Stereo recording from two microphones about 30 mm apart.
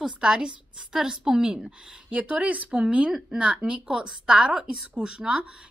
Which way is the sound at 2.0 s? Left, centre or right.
Right.